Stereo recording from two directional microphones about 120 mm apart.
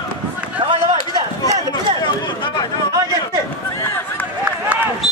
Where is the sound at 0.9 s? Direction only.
40° left (ahead or behind).